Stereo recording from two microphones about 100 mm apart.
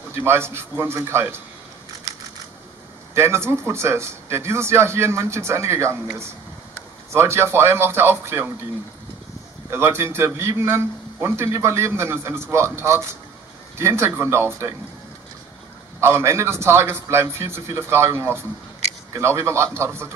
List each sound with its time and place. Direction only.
0.1 s a man's voice: 25° right (ahead or behind)
3.2 s a man's voice: 25° right (ahead or behind)
9.7 s a man's voice: 25° right (ahead or behind)
16.0 s a man's voice: 25° right (ahead or behind)